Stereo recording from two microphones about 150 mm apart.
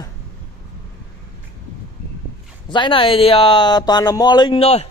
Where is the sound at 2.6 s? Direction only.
30° left (ahead or behind).